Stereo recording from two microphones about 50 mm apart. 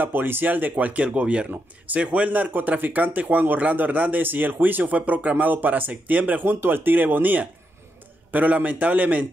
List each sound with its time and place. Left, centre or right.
0.0 s speech: right